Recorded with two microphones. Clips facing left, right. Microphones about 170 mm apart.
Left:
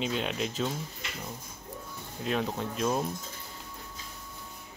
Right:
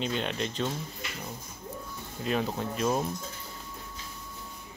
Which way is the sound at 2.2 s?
Centre (ahead or behind).